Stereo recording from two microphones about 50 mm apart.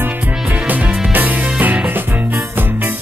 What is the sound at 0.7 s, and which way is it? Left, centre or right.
Music, right.